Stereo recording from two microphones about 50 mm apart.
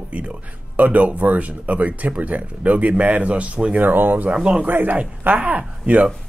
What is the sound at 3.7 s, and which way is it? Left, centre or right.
Speech, right.